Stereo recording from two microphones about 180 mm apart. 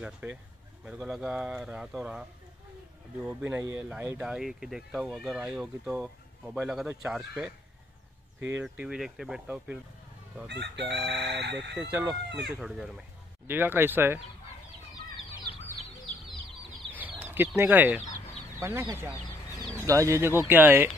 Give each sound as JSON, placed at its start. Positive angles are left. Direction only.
{"t": 0.0, "sound": "speech", "side_deg": -10}
{"t": 3.3, "sound": "speech", "side_deg": -10}
{"t": 10.5, "sound": "chicken", "side_deg": -70}
{"t": 11.7, "sound": "speech", "side_deg": -5}
{"t": 13.5, "sound": "speech", "side_deg": -10}
{"t": 17.2, "sound": "a sound", "side_deg": -10}
{"t": 17.6, "sound": "speech", "side_deg": -10}